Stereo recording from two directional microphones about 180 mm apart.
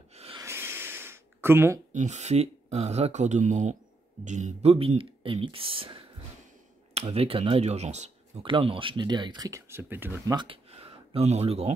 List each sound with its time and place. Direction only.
0.1 s snort: 35° right (ahead or behind)
0.4 s a sound: 15° right (ahead or behind)
1.9 s speech: 40° right (ahead or behind); by 10.3 s 15° right (ahead or behind)
10.3 s speech: 30° right (ahead or behind)